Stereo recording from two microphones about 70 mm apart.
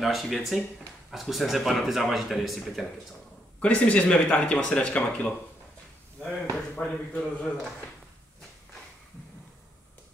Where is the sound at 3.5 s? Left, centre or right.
Centre.